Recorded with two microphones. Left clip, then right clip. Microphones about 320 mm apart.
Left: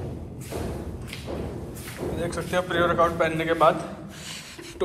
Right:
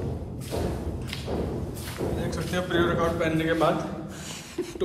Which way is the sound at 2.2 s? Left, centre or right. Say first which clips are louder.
Left 8 dB; centre.